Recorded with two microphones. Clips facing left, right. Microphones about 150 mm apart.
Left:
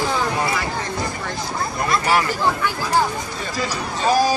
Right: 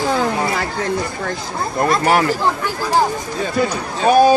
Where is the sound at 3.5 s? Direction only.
60° right (ahead or behind).